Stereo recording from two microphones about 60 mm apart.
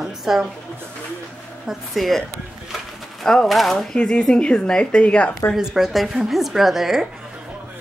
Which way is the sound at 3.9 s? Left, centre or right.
Centre.